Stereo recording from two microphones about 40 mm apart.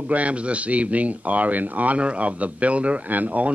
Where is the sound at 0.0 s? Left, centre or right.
Right.